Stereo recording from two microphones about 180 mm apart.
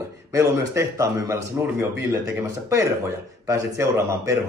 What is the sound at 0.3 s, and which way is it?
Speech, 15° right (ahead or behind).